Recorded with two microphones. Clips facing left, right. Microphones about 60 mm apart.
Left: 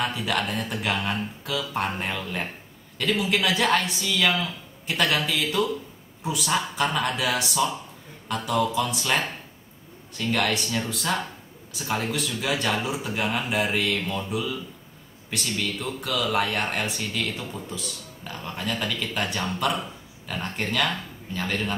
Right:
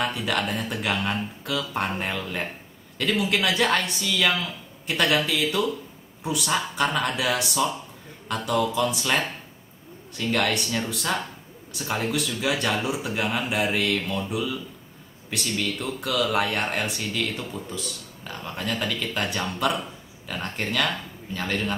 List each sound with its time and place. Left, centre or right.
0.0 s speech: centre
10.3 s speech: centre